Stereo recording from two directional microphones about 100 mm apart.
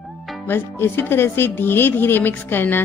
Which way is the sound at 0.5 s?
25° left (ahead or behind).